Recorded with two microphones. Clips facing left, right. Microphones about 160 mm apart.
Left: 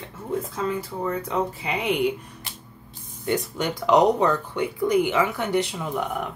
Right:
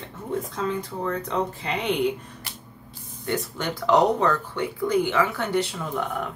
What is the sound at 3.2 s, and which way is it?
Speech, 15° left (ahead or behind).